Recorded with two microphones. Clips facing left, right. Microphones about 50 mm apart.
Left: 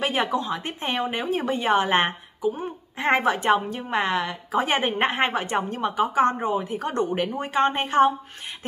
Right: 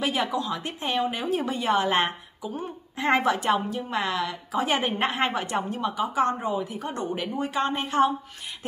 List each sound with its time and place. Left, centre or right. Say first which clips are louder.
0.0 s speech: left 2 dB; left